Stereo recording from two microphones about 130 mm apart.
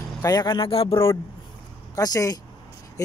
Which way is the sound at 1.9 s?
30° left (ahead or behind).